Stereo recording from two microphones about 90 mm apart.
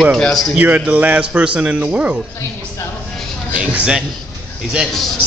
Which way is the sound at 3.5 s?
15° right (ahead or behind).